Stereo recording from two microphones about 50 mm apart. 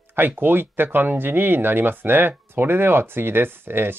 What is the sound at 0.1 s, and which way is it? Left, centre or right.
Speech, right.